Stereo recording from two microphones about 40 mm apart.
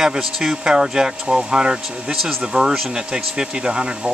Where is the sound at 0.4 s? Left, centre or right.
Centre.